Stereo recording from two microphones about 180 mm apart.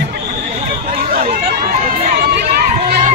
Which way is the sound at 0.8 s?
55° right (ahead or behind).